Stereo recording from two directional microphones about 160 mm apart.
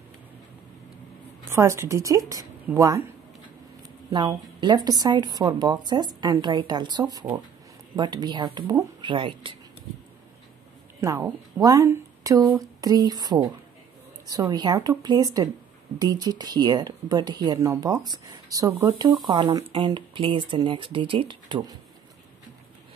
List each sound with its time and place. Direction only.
1.5 s speech: 15° right (ahead or behind)
4.1 s speech: 30° right (ahead or behind)
11.0 s speech: 20° right (ahead or behind)